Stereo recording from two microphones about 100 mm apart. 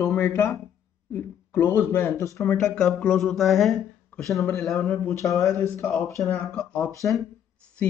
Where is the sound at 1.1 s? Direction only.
20° left (ahead or behind).